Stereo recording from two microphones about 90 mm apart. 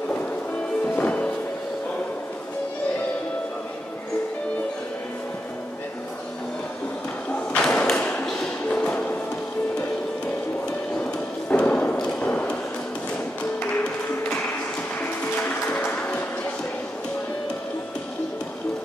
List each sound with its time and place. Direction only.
0.9 s music: 15° left (ahead or behind)
7.5 s thump: 15° left (ahead or behind)
7.8 s a sound: 10° left (ahead or behind)
11.4 s thump: 15° left (ahead or behind)
12.2 s a sound: 10° left (ahead or behind)
15.2 s music: 20° left (ahead or behind)